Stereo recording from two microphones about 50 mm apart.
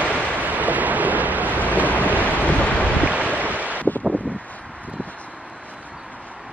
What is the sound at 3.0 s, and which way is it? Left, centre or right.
Boat, right.